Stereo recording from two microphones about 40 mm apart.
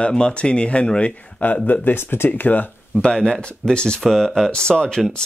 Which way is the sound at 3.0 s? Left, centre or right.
Centre.